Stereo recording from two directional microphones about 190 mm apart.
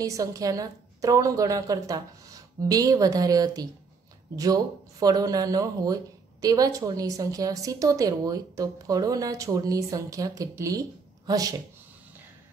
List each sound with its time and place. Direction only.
0.0 s a woman's voice: 15° right (ahead or behind)